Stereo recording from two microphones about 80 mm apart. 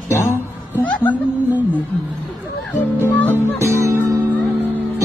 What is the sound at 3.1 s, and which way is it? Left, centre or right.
Music, left.